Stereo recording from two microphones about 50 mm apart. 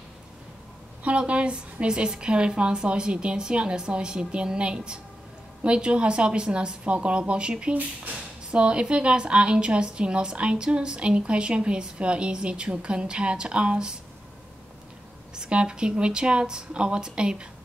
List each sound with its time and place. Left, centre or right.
1.0 s speech: right
15.3 s speech: centre